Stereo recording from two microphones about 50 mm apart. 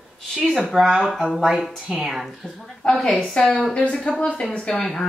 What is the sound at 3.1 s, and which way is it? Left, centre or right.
A woman's voice, left.